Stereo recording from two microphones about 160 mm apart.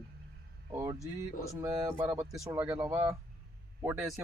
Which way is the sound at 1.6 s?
15° right (ahead or behind).